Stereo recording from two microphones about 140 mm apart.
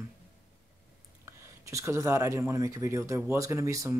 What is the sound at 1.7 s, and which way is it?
Speech, 20° right (ahead or behind).